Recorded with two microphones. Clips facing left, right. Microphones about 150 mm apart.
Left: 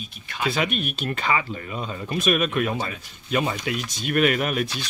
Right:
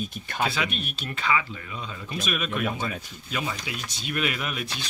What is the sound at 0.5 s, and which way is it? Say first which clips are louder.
Speech: left 5 dB; 50° left (ahead or behind).